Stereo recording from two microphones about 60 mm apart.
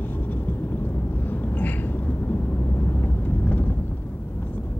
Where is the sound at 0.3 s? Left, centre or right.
Left.